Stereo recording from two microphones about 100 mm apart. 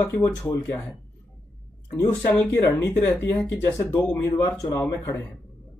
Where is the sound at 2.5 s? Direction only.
20° left (ahead or behind).